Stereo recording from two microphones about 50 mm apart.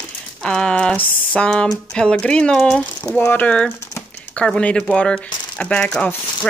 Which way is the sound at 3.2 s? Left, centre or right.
Left.